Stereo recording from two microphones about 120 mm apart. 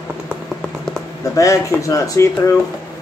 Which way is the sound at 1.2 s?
25° left (ahead or behind).